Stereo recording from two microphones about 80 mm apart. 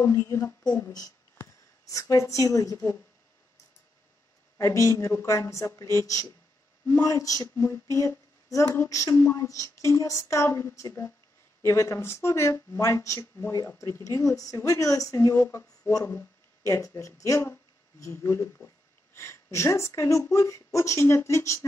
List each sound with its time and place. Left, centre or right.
0.0 s speech: left
0.7 s speech: left
4.6 s speech: left